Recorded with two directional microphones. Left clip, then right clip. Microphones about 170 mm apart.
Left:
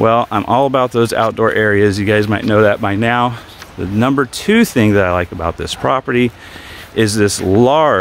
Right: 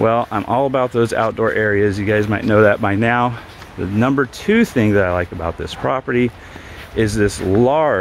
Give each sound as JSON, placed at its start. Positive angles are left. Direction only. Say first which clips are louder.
{"t": 0.0, "sound": "speech", "louder": "left 4 dB", "side_deg": 30}
{"t": 2.6, "sound": "speech", "louder": "even", "side_deg": 10}